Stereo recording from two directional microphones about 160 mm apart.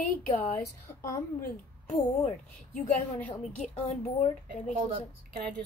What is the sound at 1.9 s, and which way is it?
A woman's voice, 45° left (ahead or behind).